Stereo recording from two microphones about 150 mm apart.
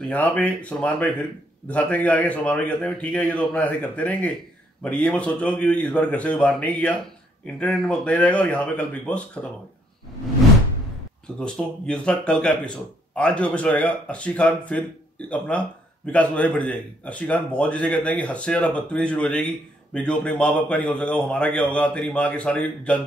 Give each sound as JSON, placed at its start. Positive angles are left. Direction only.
{"t": 0.1, "sound": "speech", "side_deg": 10}
{"t": 11.3, "sound": "speech", "side_deg": 5}